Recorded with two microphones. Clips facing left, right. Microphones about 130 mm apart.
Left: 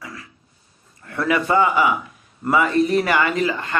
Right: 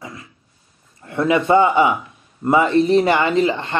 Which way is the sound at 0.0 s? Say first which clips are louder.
Right 2 dB; 20° right (ahead or behind).